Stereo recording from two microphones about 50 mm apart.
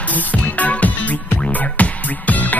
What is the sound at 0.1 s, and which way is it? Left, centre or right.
Music, left.